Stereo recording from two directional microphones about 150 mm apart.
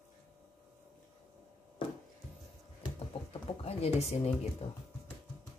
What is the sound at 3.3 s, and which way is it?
Pigeon, 40° left (ahead or behind).